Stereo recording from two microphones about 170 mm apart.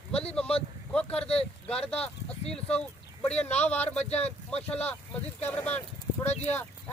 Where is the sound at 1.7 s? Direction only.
5° left (ahead or behind).